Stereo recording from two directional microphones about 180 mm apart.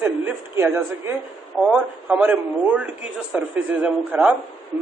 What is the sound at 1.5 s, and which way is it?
A man's voice, centre (ahead or behind).